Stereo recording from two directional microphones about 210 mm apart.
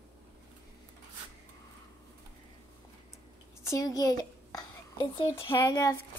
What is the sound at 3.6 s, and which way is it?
A child's voice, 15° left (ahead or behind).